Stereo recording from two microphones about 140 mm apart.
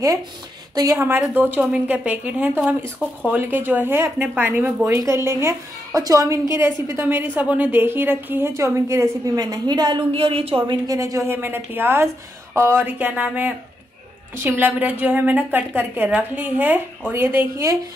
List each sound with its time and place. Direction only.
1.2 s a woman's voice: 15° right (ahead or behind)
2.8 s speech: 10° left (ahead or behind)
3.3 s a woman's voice: 15° right (ahead or behind); by 10.6 s 40° right (ahead or behind)
10.7 s a woman's voice: 25° right (ahead or behind)